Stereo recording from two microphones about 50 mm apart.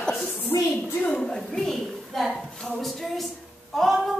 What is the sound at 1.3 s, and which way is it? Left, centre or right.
A woman's voice, centre.